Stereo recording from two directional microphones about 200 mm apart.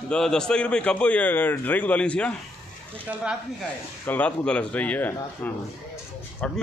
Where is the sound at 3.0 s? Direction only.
5° right (ahead or behind).